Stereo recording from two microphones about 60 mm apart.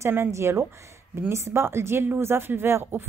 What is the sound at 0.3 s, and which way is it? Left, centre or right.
A woman's voice, right.